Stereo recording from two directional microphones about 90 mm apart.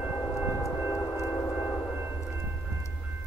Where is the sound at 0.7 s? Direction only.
35° left (ahead or behind).